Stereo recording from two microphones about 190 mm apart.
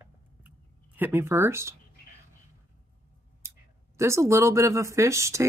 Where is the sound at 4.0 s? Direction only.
15° right (ahead or behind).